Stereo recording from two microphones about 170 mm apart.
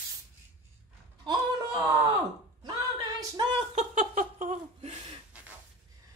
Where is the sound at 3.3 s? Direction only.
30° right (ahead or behind).